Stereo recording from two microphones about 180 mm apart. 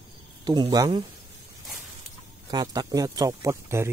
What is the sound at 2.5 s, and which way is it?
Speech, 20° right (ahead or behind).